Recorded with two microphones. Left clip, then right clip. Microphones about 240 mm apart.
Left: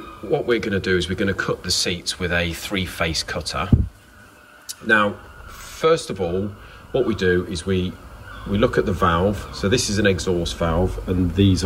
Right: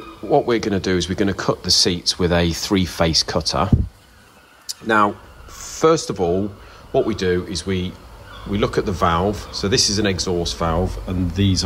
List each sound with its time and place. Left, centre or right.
0.3 s speech: centre
4.8 s speech: centre